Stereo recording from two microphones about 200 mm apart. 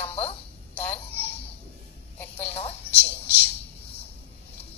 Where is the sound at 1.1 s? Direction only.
10° left (ahead or behind).